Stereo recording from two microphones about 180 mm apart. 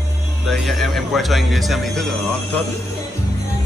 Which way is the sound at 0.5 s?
Centre (ahead or behind).